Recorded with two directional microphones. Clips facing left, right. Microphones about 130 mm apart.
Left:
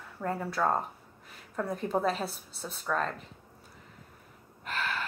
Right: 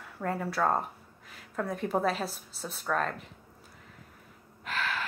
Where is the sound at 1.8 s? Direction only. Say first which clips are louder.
Right 1 dB; centre (ahead or behind).